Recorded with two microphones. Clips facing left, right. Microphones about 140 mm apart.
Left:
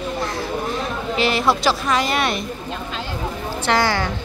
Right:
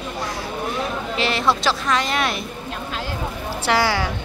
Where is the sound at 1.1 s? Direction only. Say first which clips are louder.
Left 3 dB; centre (ahead or behind).